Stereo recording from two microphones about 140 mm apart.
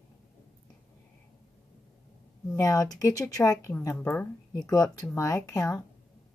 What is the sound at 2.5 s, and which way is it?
A woman's voice, 25° left (ahead or behind).